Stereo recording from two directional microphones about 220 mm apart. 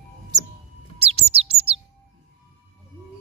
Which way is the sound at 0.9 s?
30° right (ahead or behind).